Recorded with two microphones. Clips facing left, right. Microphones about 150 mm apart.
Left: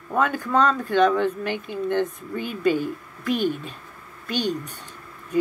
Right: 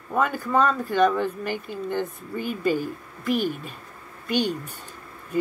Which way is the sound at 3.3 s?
5° right (ahead or behind).